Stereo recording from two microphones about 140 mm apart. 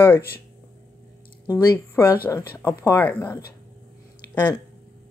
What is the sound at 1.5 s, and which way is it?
Speech, 25° left (ahead or behind).